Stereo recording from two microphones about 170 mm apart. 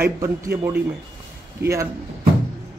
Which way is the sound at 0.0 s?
15° right (ahead or behind).